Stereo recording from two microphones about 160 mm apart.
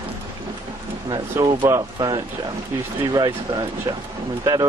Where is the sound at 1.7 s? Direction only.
25° right (ahead or behind).